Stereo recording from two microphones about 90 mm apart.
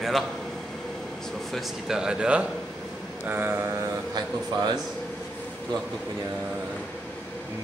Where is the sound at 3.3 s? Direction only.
25° right (ahead or behind).